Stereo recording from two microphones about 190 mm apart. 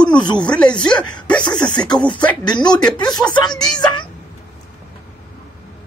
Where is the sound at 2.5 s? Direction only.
20° left (ahead or behind).